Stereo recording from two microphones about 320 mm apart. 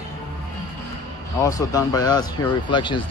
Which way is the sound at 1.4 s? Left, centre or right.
Centre.